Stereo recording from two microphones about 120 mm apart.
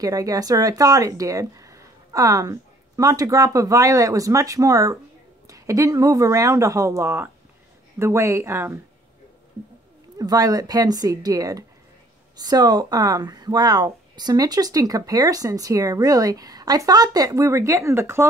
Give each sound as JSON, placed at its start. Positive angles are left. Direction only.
{"t": 0.0, "sound": "speech", "side_deg": -30}
{"t": 10.1, "sound": "speech", "side_deg": -30}